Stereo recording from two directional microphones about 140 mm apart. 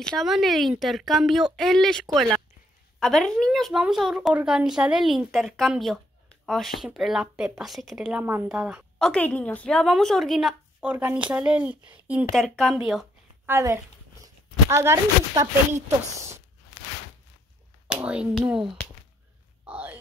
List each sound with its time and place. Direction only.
0.0 s speech: centre (ahead or behind)
8.9 s speech: 5° left (ahead or behind)
10.8 s speech: 10° right (ahead or behind)
12.3 s speech: centre (ahead or behind)
13.5 s speech: 20° right (ahead or behind)
18.0 s speech: 5° right (ahead or behind)